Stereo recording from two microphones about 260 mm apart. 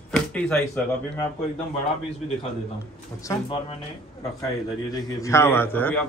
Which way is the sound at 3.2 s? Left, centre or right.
Centre.